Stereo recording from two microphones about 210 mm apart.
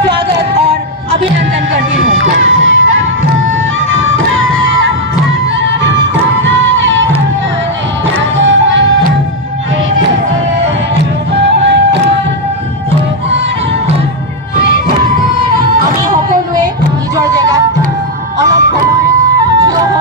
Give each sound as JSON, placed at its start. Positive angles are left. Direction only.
{"t": 2.4, "sound": "music", "side_deg": -65}
{"t": 8.2, "sound": "music", "side_deg": -60}
{"t": 11.3, "sound": "music", "side_deg": -55}
{"t": 17.4, "sound": "music", "side_deg": -15}
{"t": 18.5, "sound": "music", "side_deg": 55}